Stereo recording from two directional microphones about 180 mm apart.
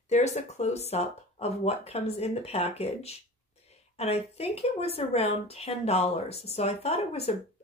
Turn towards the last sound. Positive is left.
turn(degrees=35)  # may be behind; listen again after turning